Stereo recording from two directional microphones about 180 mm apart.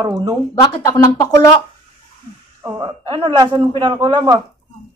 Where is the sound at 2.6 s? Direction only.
25° right (ahead or behind).